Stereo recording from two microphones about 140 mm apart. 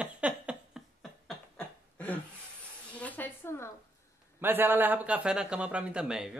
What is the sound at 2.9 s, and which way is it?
Speech, 10° left (ahead or behind).